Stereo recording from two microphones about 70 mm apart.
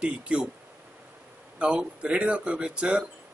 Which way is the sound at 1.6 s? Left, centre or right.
Centre.